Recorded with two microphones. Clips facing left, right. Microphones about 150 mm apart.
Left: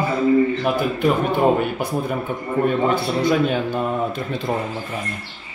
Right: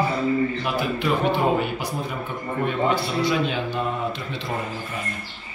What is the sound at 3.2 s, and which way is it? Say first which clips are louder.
A man's voice: left 5 dB; 50° left (ahead or behind).